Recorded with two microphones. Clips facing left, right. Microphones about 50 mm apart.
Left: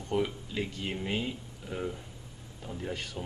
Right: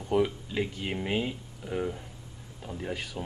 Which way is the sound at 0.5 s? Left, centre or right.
Centre.